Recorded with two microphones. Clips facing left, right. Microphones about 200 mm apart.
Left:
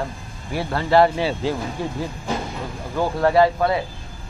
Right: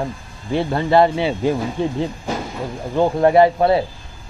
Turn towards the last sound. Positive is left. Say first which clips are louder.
# right 4 dB
turn(degrees=-25)  # may be behind; listen again after turning